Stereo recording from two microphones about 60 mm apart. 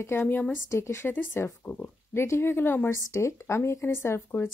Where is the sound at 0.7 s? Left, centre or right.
Left.